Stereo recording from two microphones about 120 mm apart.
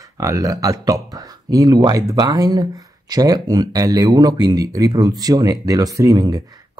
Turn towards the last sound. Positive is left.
turn(degrees=-30)  # may be behind; listen again after turning